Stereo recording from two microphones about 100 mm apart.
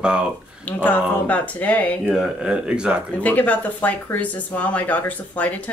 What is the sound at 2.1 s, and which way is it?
Speech, 5° right (ahead or behind).